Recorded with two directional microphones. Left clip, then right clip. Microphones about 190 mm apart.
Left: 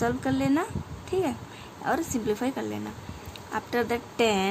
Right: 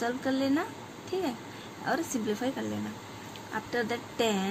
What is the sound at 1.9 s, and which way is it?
A woman's voice, 20° left (ahead or behind).